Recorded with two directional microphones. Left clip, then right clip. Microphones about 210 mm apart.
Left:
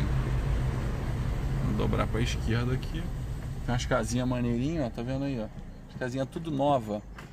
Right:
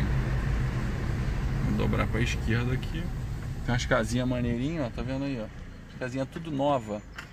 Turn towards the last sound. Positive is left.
turn(degrees=5)  # may be behind; listen again after turning